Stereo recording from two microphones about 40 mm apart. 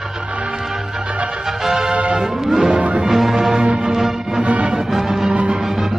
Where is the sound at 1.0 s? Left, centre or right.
Right.